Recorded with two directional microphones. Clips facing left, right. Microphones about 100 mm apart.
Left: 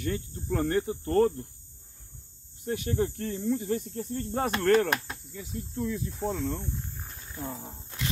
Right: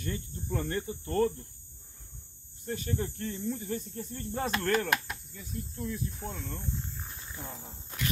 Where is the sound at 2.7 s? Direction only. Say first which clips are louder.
Left 5 dB; 65° left (ahead or behind).